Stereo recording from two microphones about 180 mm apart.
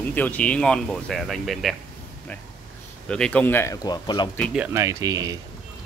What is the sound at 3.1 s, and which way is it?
Speech, 5° left (ahead or behind).